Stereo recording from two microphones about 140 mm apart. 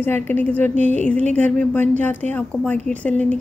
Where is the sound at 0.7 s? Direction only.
55° right (ahead or behind).